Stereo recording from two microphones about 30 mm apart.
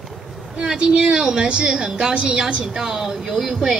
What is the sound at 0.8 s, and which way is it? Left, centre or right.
Speech, right.